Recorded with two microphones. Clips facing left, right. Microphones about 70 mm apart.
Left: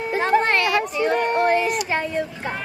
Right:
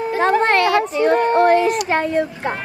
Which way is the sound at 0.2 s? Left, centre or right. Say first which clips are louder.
Right 4 dB; right.